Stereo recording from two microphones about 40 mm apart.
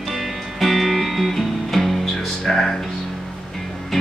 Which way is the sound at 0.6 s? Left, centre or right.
Centre.